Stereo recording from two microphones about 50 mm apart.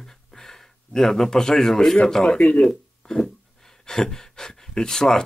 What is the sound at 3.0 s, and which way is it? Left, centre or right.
Speech, centre.